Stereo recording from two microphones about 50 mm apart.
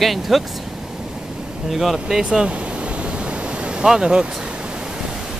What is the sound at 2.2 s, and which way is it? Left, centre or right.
Pink noise, centre.